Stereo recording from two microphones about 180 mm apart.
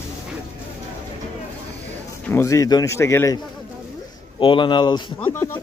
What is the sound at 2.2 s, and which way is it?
A man's voice, 15° left (ahead or behind).